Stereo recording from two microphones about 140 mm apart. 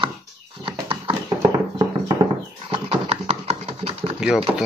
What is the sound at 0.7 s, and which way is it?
Horse, 40° right (ahead or behind).